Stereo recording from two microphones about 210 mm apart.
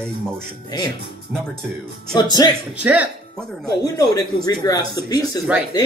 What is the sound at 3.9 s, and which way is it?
Speech, 20° left (ahead or behind).